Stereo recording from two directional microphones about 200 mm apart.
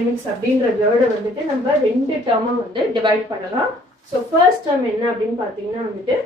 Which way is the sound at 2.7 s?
25° right (ahead or behind).